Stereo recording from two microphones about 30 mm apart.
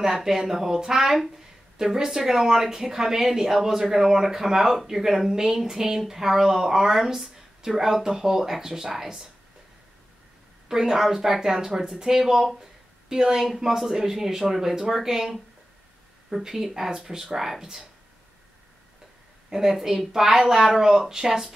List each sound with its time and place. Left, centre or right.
0.0 s speech: centre
7.3 s a sound: centre
8.0 s speech: centre
10.7 s speech: centre
16.4 s speech: centre
19.5 s speech: centre